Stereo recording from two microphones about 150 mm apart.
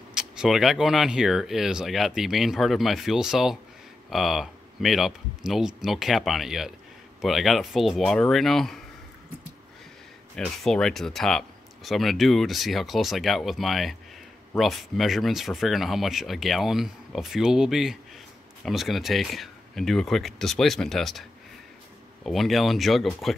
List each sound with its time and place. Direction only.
0.1 s speech: 5° right (ahead or behind)
10.3 s speech: 5° left (ahead or behind)